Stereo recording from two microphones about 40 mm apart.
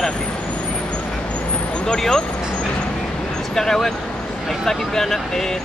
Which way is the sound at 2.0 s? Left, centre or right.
Centre.